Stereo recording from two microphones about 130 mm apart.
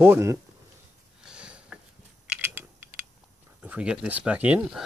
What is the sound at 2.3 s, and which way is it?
Typing, 15° right (ahead or behind).